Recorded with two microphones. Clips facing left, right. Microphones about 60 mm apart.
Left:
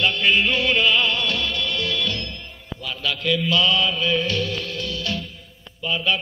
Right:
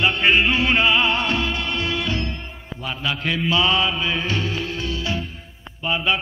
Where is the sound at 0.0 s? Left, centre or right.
Right.